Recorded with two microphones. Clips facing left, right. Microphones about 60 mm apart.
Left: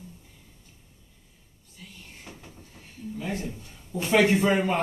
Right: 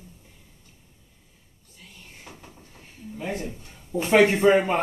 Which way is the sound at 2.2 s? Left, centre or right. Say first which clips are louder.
Right 1 dB; centre.